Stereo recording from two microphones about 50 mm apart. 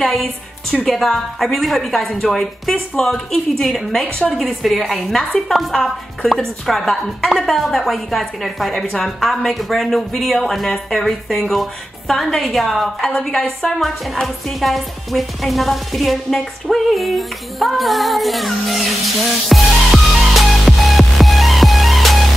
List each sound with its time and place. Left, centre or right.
0.0 s a woman's voice: centre